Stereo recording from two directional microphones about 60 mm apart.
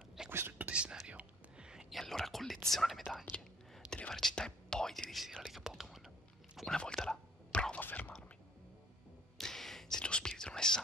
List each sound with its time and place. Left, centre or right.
0.3 s whispering: right
0.7 s whispering: centre
1.9 s whispering: centre
4.1 s speech: centre
6.7 s whispering: centre
7.8 s whispering: left
9.4 s gasp: centre
10.0 s whispering: centre